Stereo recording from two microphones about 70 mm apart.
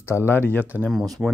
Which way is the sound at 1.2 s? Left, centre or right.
Right.